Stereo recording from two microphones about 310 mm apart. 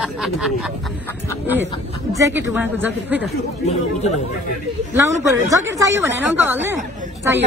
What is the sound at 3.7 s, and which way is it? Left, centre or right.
Speech, left.